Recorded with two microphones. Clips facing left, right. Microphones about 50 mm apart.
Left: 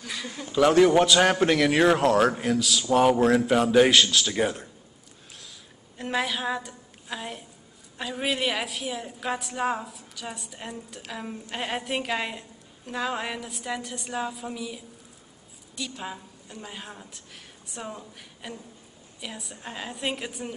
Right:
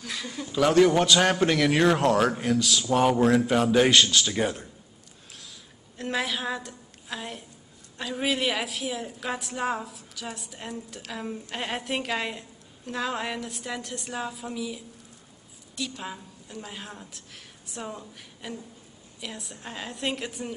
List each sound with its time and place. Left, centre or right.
0.0 s a woman's voice: centre
5.3 s a sound: centre
8.0 s a woman's voice: centre